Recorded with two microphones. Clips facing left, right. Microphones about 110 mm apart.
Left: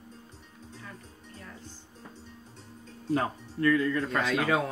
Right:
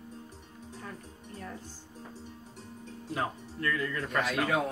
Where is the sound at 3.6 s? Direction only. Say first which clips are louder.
Left 7 dB; 25° left (ahead or behind).